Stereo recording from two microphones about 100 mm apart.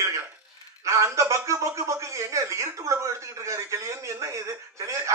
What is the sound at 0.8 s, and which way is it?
A man's voice, 30° right (ahead or behind).